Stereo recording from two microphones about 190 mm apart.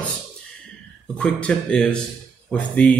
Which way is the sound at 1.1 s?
5° left (ahead or behind).